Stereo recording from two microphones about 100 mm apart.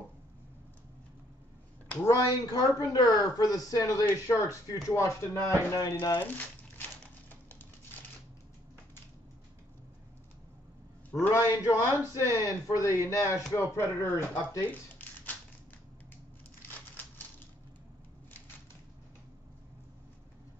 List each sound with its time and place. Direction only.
2.0 s speech: 35° left (ahead or behind)
4.0 s speech: 30° left (ahead or behind)
6.1 s speech: 20° left (ahead or behind)
7.2 s typing: 20° left (ahead or behind)
11.1 s speech: 25° left (ahead or behind)
11.9 s speech: 25° right (ahead or behind)
12.2 s speech: 35° left (ahead or behind)
14.7 s a sound: 20° left (ahead or behind)